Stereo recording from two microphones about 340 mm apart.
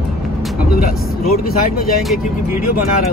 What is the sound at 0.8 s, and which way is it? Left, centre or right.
Speech, left.